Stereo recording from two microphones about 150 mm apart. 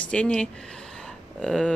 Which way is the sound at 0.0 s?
5° left (ahead or behind).